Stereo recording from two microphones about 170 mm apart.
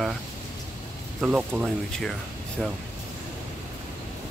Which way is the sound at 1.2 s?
5° right (ahead or behind).